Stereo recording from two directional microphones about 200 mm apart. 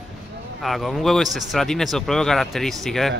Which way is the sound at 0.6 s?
Centre (ahead or behind).